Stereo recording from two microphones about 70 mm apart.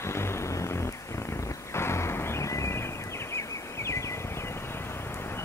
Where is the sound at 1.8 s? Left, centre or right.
Left.